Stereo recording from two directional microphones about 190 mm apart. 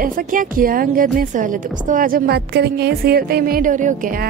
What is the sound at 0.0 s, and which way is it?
A woman's voice, 45° right (ahead or behind).